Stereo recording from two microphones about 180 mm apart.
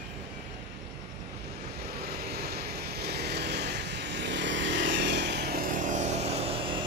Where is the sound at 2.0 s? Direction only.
60° right (ahead or behind).